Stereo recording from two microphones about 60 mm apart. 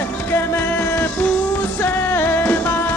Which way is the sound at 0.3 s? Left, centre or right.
Left.